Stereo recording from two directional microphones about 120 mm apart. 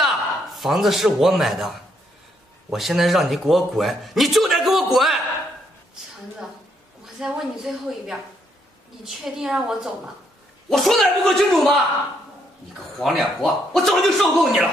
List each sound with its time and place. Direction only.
0.0 s a man's voice: centre (ahead or behind)
7.2 s a man's voice: 5° right (ahead or behind)
13.0 s a man's voice: centre (ahead or behind)